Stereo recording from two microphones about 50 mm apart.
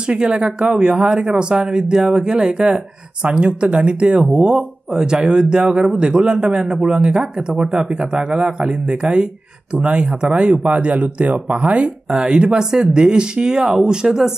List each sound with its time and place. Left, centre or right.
0.1 s speech: centre
4.9 s speech: centre
12.1 s speech: centre